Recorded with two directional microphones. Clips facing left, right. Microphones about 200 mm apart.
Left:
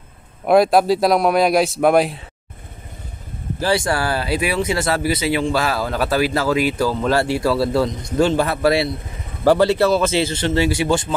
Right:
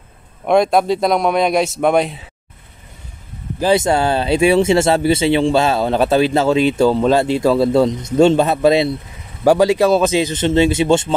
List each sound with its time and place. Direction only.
0.5 s a man's voice: 5° left (ahead or behind)
3.5 s speech: 20° right (ahead or behind)